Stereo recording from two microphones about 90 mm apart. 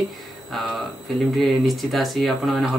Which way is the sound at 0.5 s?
Centre (ahead or behind).